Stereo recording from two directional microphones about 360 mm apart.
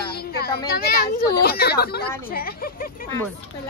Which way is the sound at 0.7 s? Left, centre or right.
Left.